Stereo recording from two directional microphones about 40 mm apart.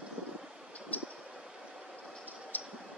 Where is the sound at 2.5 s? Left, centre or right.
Left.